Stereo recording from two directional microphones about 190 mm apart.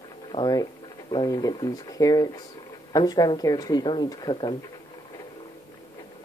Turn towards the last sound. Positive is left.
turn(degrees=25)  # may be behind; listen again after turning